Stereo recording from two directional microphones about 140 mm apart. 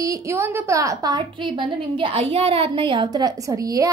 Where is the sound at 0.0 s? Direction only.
25° right (ahead or behind).